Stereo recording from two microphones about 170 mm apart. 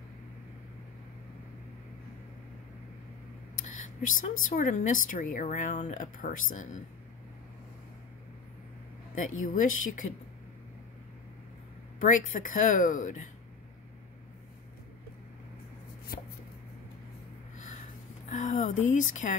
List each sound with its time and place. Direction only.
3.6 s speech: 45° left (ahead or behind)
9.1 s speech: 50° left (ahead or behind)
12.0 s speech: 50° left (ahead or behind)
16.1 s a sound: 65° left (ahead or behind)
18.3 s speech: 45° left (ahead or behind)